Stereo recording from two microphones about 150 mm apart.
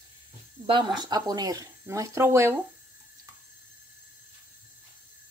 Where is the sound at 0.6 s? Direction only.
30° right (ahead or behind).